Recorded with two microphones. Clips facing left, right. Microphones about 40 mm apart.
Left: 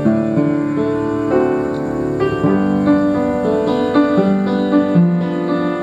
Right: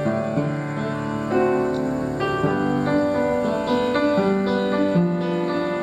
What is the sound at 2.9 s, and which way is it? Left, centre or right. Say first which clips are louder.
Music: left 8 dB; left.